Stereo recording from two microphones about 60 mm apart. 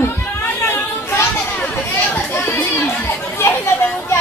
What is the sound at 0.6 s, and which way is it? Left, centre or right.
Chatter, left.